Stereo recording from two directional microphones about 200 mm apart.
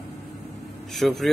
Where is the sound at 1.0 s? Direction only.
Centre (ahead or behind).